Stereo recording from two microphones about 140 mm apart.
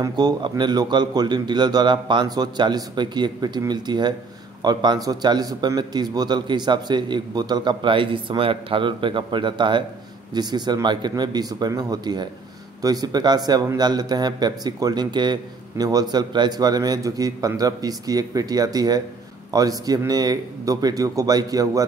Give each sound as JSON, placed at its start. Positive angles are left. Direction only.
{"t": 0.0, "sound": "a man's voice", "side_deg": -30}